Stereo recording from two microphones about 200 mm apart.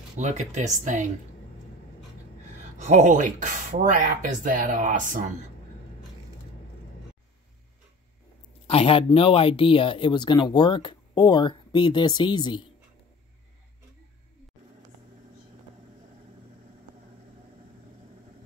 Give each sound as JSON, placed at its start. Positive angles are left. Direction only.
{"t": 0.2, "sound": "speech", "side_deg": -35}
{"t": 2.8, "sound": "speech", "side_deg": -35}
{"t": 8.6, "sound": "speech", "side_deg": 30}